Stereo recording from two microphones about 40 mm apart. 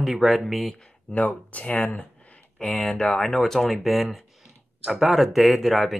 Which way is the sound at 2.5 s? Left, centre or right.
Left.